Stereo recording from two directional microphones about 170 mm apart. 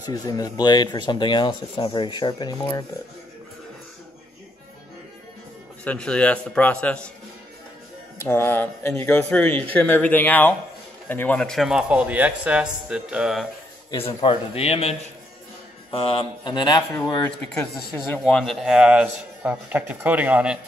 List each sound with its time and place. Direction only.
0.0 s speech: 20° left (ahead or behind)
5.9 s speech: 5° left (ahead or behind)
8.2 s a man's voice: 15° left (ahead or behind); by 13.5 s 5° right (ahead or behind)
13.8 s speech: 30° left (ahead or behind); by 17.6 s 15° left (ahead or behind)
18.1 s a man's voice: 5° left (ahead or behind)